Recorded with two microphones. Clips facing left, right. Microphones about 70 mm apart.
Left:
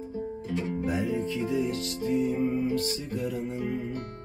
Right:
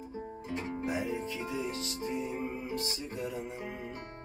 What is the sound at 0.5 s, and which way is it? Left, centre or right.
Music, right.